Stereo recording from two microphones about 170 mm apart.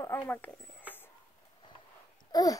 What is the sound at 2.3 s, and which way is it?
Babbling, 20° left (ahead or behind).